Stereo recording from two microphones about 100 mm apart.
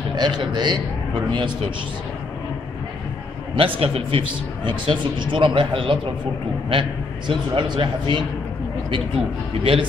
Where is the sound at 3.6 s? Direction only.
70° right (ahead or behind).